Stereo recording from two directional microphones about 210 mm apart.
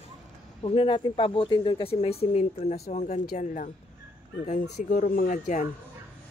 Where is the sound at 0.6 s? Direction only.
25° left (ahead or behind).